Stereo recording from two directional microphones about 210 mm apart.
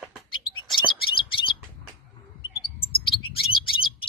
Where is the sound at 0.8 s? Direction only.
25° left (ahead or behind).